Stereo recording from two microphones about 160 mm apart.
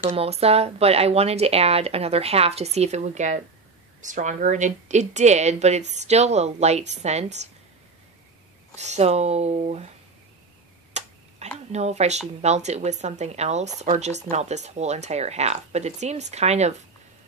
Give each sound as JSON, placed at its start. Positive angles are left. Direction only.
{"t": 0.1, "sound": "speech", "side_deg": -40}
{"t": 8.7, "sound": "speech", "side_deg": -45}
{"t": 10.9, "sound": "a sound", "side_deg": -45}
{"t": 12.4, "sound": "speech", "side_deg": -45}